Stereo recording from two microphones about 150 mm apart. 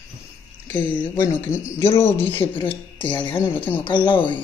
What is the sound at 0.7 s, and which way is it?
Speech, 10° left (ahead or behind).